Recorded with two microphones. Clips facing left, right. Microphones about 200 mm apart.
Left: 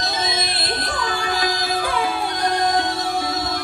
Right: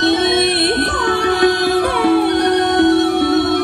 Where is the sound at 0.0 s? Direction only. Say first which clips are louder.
Right 12 dB; 65° right (ahead or behind).